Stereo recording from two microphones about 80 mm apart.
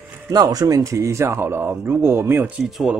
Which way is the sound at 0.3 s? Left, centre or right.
Right.